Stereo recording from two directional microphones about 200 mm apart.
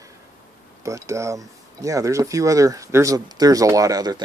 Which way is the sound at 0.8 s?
15° right (ahead or behind).